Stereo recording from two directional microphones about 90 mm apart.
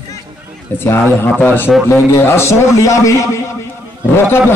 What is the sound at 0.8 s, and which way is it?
A man's voice, 25° left (ahead or behind).